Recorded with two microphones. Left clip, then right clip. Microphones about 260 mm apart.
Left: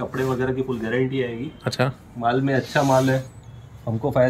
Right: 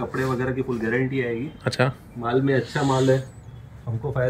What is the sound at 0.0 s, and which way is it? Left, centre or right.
Speech, centre.